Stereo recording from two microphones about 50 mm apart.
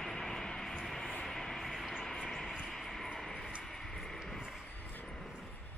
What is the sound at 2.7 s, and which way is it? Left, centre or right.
Vehicle, centre.